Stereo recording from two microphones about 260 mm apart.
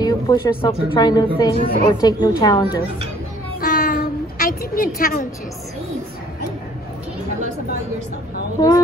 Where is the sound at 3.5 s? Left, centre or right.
Left.